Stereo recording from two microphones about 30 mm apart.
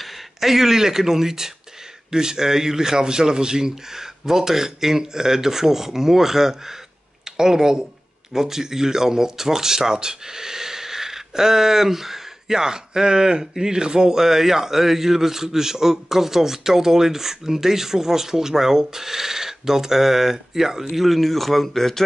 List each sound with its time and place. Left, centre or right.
0.0 s speech: centre
20.9 s a man's voice: centre